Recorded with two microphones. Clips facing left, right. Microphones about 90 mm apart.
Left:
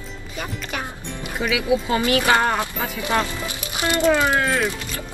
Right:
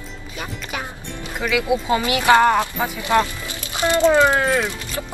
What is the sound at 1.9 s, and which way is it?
A woman's voice, 20° right (ahead or behind).